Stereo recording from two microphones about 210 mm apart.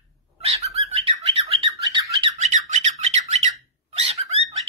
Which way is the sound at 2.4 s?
35° right (ahead or behind).